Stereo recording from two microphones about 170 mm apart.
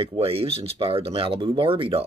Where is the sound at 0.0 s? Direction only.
35° right (ahead or behind).